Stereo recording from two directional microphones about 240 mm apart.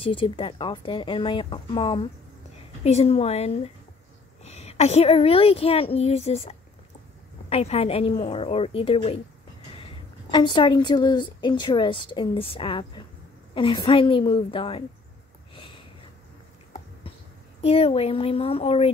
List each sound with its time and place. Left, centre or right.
0.0 s a woman's voice: left
15.5 s a sound: left
17.6 s a woman's voice: left